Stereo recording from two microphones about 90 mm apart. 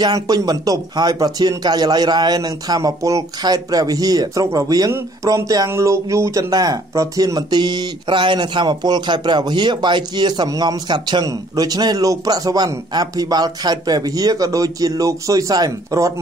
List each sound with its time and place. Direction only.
0.0 s a man's voice: 50° right (ahead or behind); by 6.5 s 30° right (ahead or behind)
6.5 s a man's voice: 45° right (ahead or behind)
11.2 s a man's voice: 45° right (ahead or behind)